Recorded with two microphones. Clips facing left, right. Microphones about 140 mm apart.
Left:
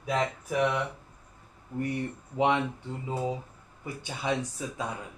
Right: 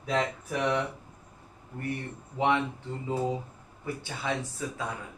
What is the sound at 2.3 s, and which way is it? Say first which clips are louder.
Speech: left 1 dB; 20° left (ahead or behind).